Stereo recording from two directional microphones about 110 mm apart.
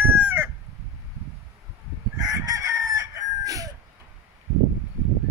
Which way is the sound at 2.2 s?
30° right (ahead or behind).